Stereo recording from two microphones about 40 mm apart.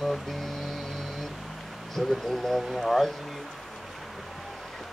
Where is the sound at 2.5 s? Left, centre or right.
Centre.